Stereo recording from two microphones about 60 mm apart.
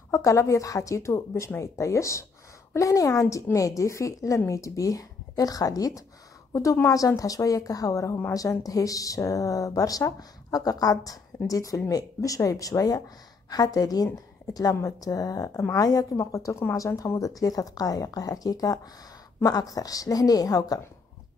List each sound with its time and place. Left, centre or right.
0.1 s speech: left
6.5 s speech: left
6.9 s speech: left
11.4 s a woman's voice: left
16.2 s speech: left
16.7 s a woman's voice: left